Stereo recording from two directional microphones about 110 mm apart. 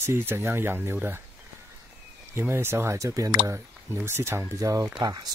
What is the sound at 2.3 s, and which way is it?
Speech, 25° right (ahead or behind).